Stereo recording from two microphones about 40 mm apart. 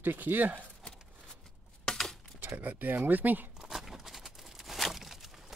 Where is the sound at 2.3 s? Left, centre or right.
Right.